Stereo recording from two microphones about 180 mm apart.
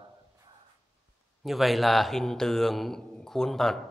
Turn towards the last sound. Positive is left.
turn(degrees=0)  # may be behind; listen again after turning